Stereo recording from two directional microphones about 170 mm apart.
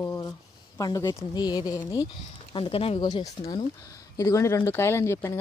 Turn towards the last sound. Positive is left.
turn(degrees=15)  # may be behind; listen again after turning